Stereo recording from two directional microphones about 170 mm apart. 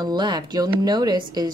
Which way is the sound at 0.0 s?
25° right (ahead or behind).